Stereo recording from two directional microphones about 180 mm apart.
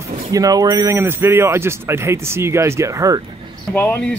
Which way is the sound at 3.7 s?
10° left (ahead or behind).